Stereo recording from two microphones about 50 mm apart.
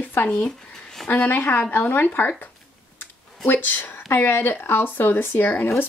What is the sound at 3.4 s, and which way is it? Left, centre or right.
Speech, left.